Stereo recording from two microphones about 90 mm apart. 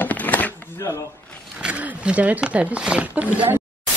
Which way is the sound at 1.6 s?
15° right (ahead or behind).